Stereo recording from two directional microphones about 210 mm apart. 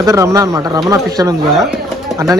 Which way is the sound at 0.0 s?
15° right (ahead or behind).